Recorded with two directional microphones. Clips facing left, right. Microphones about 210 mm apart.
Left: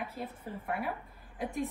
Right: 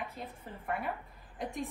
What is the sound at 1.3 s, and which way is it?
Speech, centre (ahead or behind).